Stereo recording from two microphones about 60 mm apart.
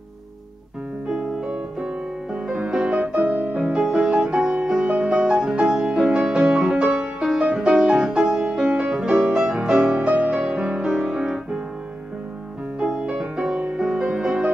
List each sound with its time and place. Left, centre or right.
1.0 s piano: centre
2.4 s music: centre
9.9 s music: right
12.7 s music: centre